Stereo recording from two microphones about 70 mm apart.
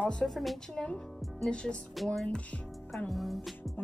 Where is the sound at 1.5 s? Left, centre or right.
Centre.